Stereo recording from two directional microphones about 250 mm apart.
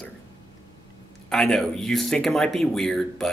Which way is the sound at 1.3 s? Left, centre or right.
Centre.